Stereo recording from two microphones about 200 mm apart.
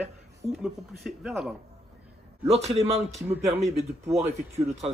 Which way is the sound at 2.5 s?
30° right (ahead or behind).